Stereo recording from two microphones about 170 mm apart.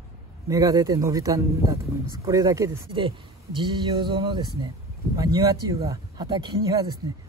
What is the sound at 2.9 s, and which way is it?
Speech, 30° right (ahead or behind).